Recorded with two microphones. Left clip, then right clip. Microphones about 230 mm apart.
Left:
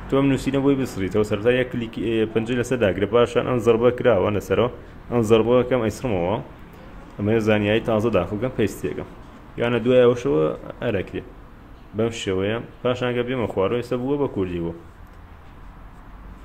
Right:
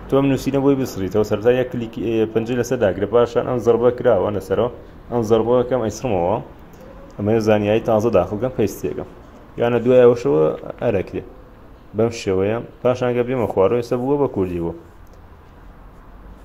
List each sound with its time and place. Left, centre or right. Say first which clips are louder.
0.1 s a man's voice: right 3 dB; centre